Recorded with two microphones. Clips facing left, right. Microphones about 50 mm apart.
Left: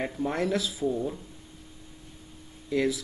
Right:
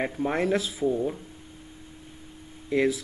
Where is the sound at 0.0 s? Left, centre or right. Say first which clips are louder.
Right 2 dB; right.